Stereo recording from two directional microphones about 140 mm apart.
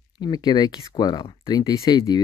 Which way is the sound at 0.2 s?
30° left (ahead or behind).